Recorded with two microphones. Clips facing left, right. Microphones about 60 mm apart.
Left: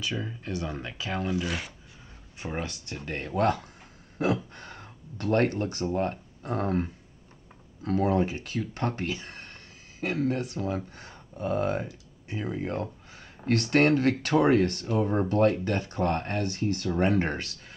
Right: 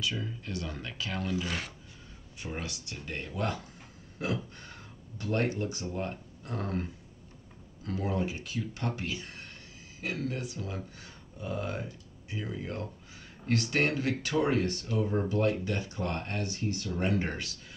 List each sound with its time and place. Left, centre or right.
0.0 s speech: left
1.3 s speech: centre
2.4 s speech: left
7.8 s speech: left
13.5 s speech: left